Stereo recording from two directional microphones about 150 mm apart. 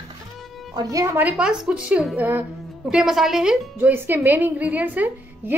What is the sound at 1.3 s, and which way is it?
A woman's voice, 5° right (ahead or behind).